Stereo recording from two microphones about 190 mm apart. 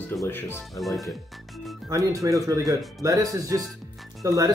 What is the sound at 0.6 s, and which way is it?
Speech, centre (ahead or behind).